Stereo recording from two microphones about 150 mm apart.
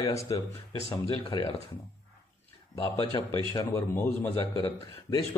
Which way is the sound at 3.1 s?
25° left (ahead or behind).